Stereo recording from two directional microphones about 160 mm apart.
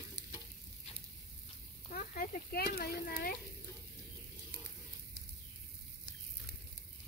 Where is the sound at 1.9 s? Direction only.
65° left (ahead or behind).